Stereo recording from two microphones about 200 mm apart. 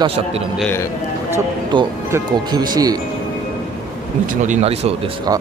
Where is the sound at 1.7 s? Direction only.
20° right (ahead or behind).